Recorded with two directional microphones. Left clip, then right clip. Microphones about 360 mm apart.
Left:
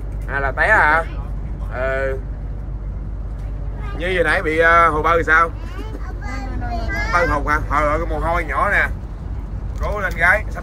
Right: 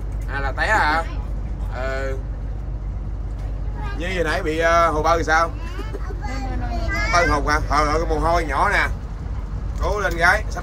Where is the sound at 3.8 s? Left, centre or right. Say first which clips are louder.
Left 5 dB; centre.